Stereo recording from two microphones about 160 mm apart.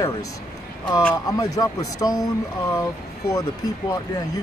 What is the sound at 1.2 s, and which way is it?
Speech, 20° left (ahead or behind).